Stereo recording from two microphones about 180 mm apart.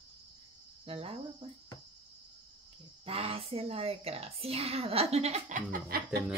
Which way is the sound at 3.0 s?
30° right (ahead or behind).